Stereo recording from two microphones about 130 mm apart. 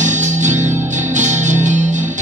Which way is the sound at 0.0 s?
70° right (ahead or behind).